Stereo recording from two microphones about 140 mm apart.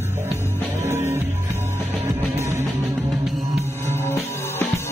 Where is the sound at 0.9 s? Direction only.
20° right (ahead or behind).